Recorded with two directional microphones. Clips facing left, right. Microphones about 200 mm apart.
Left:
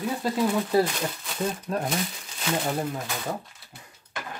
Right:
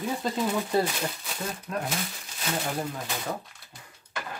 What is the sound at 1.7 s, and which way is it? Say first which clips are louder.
Speech: left 1 dB; 30° left (ahead or behind).